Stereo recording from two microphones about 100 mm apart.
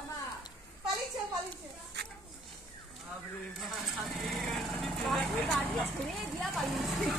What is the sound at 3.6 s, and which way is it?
Vehicle, centre (ahead or behind).